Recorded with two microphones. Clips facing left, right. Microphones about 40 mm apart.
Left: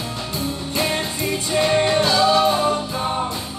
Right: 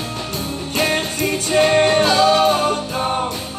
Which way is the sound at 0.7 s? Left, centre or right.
Right.